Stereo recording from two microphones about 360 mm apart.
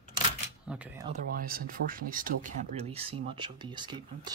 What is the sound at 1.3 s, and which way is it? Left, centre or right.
Speech, right.